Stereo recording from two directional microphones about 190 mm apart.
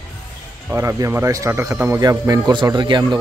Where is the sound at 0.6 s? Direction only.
15° right (ahead or behind).